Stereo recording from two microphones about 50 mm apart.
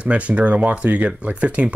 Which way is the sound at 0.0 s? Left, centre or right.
Right.